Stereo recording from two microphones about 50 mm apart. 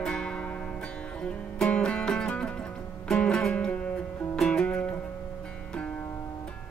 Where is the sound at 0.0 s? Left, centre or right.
Centre.